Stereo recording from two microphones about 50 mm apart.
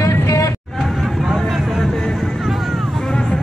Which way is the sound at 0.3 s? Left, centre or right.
Left.